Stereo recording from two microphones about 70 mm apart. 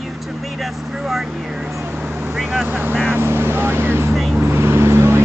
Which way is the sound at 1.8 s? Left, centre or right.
Right.